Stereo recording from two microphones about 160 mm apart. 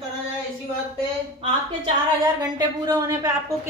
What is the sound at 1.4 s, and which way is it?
Speech, 40° right (ahead or behind).